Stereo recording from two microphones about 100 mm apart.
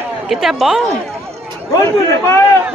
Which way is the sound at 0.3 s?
Centre (ahead or behind).